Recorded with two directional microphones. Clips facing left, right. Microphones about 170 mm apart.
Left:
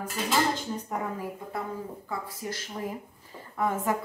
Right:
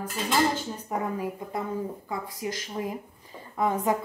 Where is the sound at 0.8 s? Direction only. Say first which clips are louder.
Right 3 dB; 15° right (ahead or behind).